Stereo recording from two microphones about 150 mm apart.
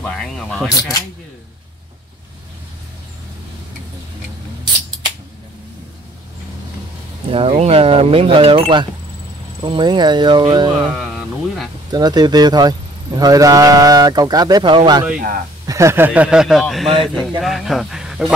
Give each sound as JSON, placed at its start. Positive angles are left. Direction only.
{"t": 0.0, "sound": "speech", "side_deg": 5}
{"t": 7.2, "sound": "speech", "side_deg": -40}
{"t": 10.7, "sound": "music", "side_deg": -5}
{"t": 11.9, "sound": "a man's voice", "side_deg": -25}